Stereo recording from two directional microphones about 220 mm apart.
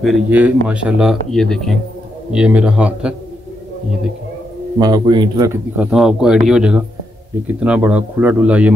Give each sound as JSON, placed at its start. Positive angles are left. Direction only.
{"t": 0.0, "sound": "a man's voice", "side_deg": -5}
{"t": 4.7, "sound": "a man's voice", "side_deg": -20}